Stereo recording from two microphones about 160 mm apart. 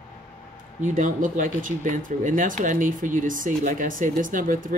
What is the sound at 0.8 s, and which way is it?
Speech, 55° right (ahead or behind).